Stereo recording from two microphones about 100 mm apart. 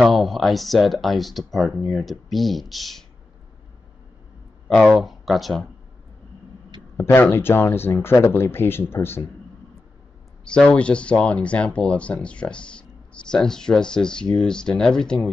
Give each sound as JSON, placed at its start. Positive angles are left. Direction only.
{"t": 0.0, "sound": "speech", "side_deg": 0}
{"t": 4.6, "sound": "speech", "side_deg": 5}
{"t": 7.2, "sound": "speech", "side_deg": 25}
{"t": 10.4, "sound": "speech", "side_deg": 10}